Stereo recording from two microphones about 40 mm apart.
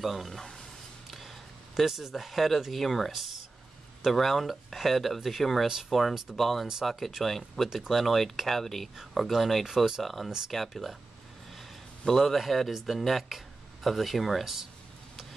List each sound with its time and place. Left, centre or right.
0.0 s speech: centre
1.8 s speech: centre
12.0 s a man's voice: centre
14.4 s speech: centre